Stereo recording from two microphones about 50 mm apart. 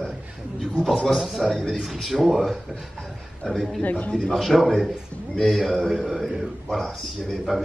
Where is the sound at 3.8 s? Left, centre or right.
Left.